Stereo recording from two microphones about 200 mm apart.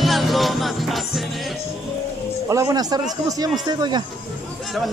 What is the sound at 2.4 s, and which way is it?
A man's voice, 15° right (ahead or behind).